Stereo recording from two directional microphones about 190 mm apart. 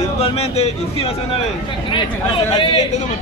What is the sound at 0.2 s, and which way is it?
A man's voice, 35° left (ahead or behind).